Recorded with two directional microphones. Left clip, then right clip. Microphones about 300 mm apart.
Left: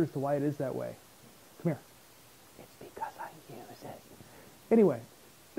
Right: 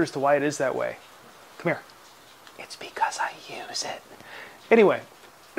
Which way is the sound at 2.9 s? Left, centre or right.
Centre.